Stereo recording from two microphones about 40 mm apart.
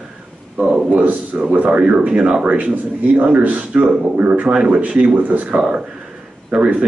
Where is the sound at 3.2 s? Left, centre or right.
Right.